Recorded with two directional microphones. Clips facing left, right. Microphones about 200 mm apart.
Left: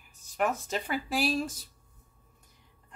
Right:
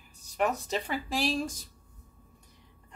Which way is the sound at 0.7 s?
5° left (ahead or behind).